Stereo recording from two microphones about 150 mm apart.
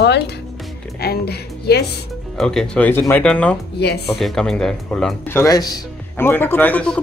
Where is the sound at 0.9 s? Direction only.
90° left.